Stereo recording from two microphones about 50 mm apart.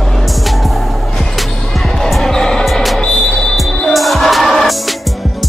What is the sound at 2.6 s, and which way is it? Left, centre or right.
Music, centre.